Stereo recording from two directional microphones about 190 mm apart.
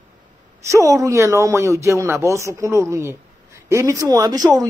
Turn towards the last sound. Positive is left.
turn(degrees=-20)  # may be behind; listen again after turning